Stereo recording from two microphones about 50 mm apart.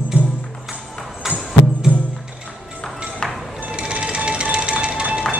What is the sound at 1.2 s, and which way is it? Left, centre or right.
Music, centre.